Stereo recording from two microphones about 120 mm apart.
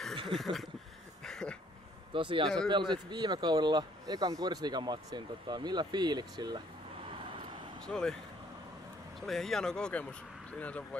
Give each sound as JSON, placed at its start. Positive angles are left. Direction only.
{"t": 0.3, "sound": "speech", "side_deg": 0}
{"t": 1.2, "sound": "a sound", "side_deg": 5}
{"t": 2.1, "sound": "speech", "side_deg": -45}
{"t": 7.8, "sound": "speech", "side_deg": 5}
{"t": 9.2, "sound": "speech", "side_deg": 5}